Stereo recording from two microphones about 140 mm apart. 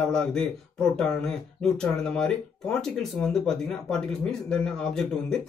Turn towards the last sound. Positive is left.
turn(degrees=5)  # may be behind; listen again after turning